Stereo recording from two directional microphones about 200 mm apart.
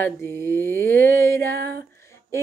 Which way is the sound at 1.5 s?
55° right (ahead or behind).